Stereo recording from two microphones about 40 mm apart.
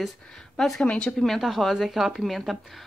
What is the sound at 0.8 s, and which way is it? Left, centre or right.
Speech, left.